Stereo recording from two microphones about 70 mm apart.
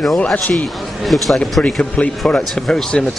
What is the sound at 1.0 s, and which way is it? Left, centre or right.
Speech, centre.